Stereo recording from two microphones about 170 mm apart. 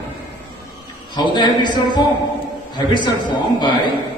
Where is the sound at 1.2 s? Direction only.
25° left (ahead or behind).